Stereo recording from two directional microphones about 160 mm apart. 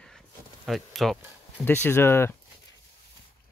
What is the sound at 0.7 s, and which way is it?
Speech, centre (ahead or behind).